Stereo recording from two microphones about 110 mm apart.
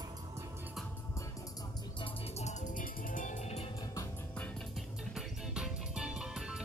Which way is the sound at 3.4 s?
75° left (ahead or behind).